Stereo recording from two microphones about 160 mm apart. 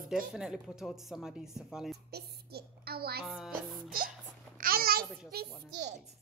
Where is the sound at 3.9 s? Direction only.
60° right (ahead or behind).